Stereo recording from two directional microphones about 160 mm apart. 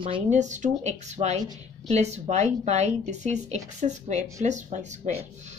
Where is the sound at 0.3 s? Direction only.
50° right (ahead or behind).